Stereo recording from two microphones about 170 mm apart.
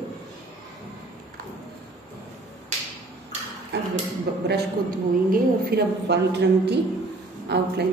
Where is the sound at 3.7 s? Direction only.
80° right.